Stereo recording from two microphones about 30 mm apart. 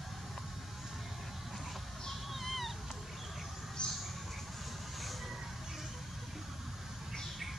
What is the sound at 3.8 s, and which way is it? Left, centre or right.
Mouse, left.